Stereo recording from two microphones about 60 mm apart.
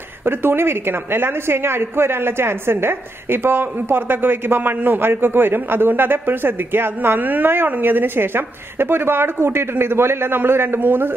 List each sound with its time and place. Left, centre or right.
0.2 s a woman's voice: right